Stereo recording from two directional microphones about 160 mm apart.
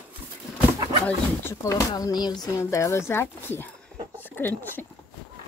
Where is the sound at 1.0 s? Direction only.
15° left (ahead or behind).